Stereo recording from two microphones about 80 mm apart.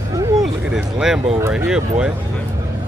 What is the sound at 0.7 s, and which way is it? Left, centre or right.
Speech, centre.